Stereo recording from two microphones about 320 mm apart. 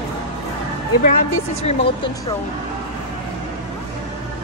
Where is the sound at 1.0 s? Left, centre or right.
Left.